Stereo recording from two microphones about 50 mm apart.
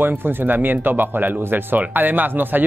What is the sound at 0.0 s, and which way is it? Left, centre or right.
Speech, right.